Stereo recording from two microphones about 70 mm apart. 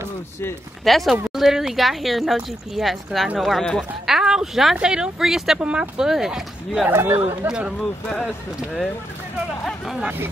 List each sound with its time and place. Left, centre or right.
0.8 s speech: centre
5.6 s speech: centre
6.9 s speech: right
7.4 s speech: centre